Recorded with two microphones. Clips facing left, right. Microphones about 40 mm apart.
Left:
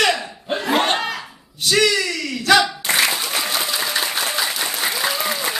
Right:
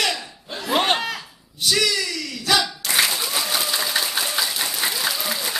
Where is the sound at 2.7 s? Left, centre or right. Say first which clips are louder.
Left 4 dB; left.